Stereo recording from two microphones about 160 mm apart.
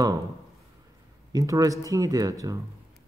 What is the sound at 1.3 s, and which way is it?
Speech, 20° right (ahead or behind).